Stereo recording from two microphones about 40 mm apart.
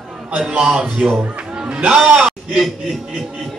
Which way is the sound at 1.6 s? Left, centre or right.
Right.